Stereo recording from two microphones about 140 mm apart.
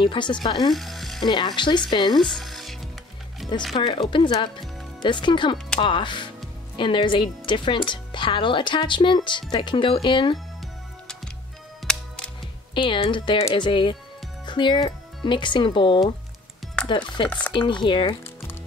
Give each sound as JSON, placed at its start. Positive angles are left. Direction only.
{"t": 0.0, "sound": "speech", "side_deg": 35}
{"t": 0.7, "sound": "frying", "side_deg": 0}
{"t": 1.2, "sound": "speech", "side_deg": 30}
{"t": 2.1, "sound": "music", "side_deg": 0}
{"t": 3.7, "sound": "speech", "side_deg": 35}
{"t": 12.7, "sound": "speech", "side_deg": 35}